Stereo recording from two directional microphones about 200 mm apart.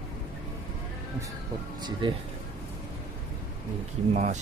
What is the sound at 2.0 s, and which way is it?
Speech, 25° right (ahead or behind).